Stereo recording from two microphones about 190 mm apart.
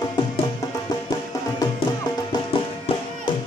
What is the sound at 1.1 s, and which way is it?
Music, 20° left (ahead or behind).